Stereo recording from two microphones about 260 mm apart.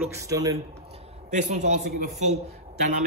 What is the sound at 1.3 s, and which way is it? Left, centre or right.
Speech, right.